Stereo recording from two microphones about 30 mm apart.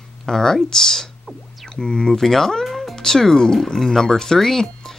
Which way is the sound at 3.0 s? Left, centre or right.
Centre.